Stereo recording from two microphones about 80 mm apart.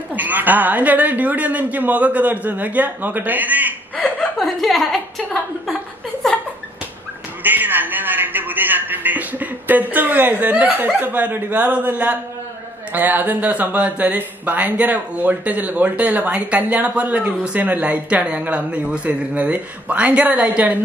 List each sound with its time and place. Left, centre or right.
0.1 s speech: right
3.9 s speech: centre
7.4 s speech: right